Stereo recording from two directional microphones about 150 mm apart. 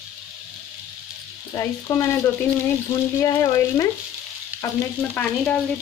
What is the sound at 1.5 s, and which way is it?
Speech, 20° left (ahead or behind).